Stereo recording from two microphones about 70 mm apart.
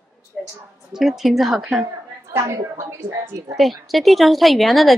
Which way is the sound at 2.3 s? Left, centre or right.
Right.